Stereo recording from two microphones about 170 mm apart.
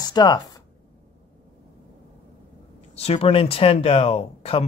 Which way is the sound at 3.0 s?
35° left (ahead or behind).